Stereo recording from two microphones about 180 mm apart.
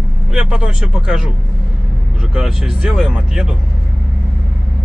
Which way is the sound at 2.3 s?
5° right (ahead or behind).